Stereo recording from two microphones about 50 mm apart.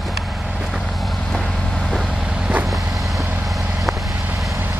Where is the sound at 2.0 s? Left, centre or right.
Centre.